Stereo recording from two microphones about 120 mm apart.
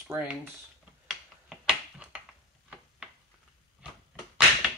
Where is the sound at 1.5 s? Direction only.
5° right (ahead or behind).